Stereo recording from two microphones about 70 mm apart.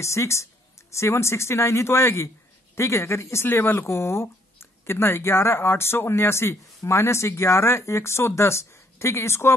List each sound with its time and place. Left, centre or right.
0.0 s speech: left